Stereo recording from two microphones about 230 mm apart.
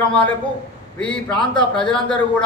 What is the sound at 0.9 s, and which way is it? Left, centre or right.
A man's voice, centre.